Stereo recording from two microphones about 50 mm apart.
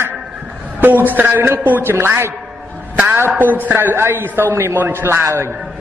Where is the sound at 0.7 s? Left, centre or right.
Right.